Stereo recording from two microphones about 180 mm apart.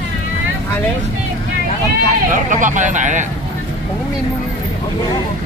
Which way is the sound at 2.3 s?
45° right (ahead or behind).